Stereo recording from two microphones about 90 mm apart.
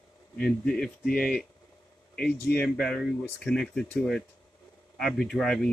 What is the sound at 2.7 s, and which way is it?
Speech, 5° left (ahead or behind).